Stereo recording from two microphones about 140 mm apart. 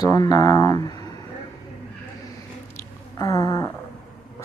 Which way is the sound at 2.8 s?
25° left (ahead or behind).